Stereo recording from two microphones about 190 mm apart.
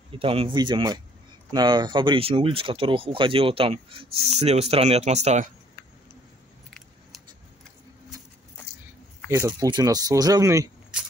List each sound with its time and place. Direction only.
0.1 s speech: 30° right (ahead or behind)
9.3 s speech: 15° right (ahead or behind)